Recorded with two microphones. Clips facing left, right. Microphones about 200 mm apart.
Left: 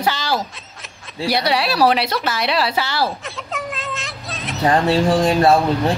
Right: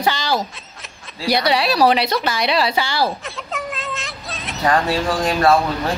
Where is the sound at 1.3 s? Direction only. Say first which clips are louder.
Right 2 dB; 5° left (ahead or behind).